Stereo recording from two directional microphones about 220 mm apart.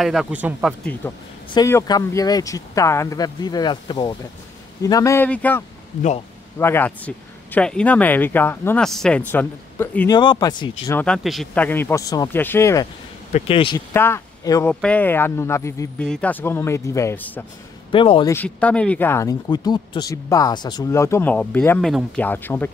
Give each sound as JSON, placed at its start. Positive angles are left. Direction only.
{"t": 0.0, "sound": "speech", "side_deg": 0}
{"t": 1.0, "sound": "speech", "side_deg": 10}
{"t": 6.6, "sound": "speech", "side_deg": 10}
{"t": 10.9, "sound": "speech", "side_deg": 5}
{"t": 13.3, "sound": "speech", "side_deg": 25}
{"t": 13.9, "sound": "speech", "side_deg": 10}
{"t": 17.9, "sound": "speech", "side_deg": 25}
{"t": 18.3, "sound": "speech", "side_deg": 5}